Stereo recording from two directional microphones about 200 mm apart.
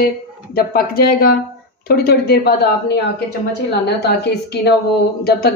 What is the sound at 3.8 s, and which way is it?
Speech, 55° left (ahead or behind).